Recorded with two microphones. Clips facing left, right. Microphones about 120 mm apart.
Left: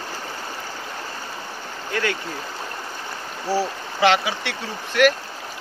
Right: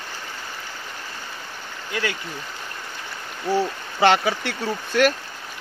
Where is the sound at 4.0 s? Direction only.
40° right (ahead or behind).